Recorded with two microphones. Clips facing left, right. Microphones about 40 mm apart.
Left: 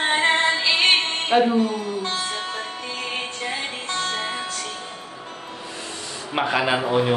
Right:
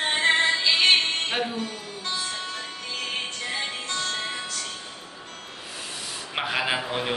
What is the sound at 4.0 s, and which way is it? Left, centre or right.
Music, left.